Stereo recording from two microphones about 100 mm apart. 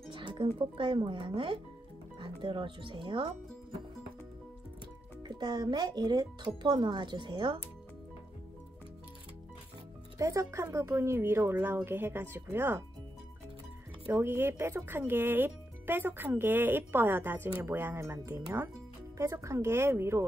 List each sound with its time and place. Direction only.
0.1 s speech: 55° right (ahead or behind)
5.2 s speech: 40° right (ahead or behind)
10.1 s speech: 35° right (ahead or behind)
14.0 s speech: 25° right (ahead or behind)